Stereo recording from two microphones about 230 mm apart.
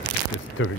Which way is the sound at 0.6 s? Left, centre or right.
Left.